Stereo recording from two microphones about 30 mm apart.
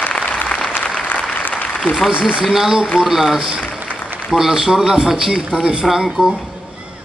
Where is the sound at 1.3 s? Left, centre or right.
Left.